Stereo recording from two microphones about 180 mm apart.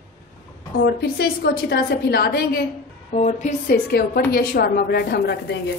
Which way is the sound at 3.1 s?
40° left (ahead or behind).